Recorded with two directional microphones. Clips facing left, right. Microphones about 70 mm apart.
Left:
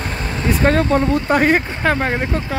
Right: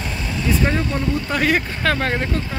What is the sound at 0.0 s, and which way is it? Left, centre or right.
Vehicle, left.